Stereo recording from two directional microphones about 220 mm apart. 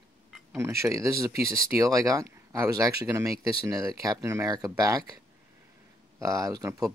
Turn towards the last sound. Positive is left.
turn(degrees=-15)  # may be behind; listen again after turning